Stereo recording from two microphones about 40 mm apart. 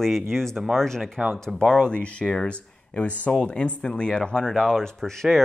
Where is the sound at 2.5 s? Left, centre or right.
Left.